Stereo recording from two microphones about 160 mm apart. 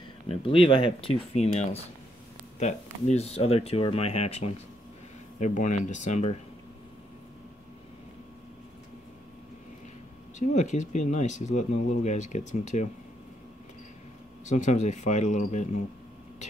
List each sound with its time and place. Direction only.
0.3 s speech: 35° left (ahead or behind)
10.4 s speech: 50° left (ahead or behind)
14.4 s speech: 50° left (ahead or behind)